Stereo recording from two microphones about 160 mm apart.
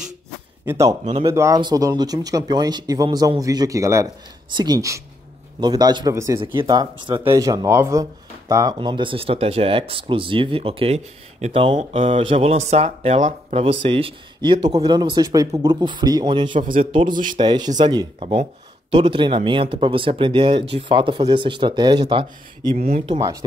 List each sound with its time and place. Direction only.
0.7 s speech: 20° right (ahead or behind)
6.4 s speech: 30° right (ahead or behind)
22.8 s speech: 40° right (ahead or behind)